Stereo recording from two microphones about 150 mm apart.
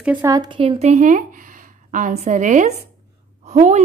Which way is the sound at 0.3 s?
30° right (ahead or behind).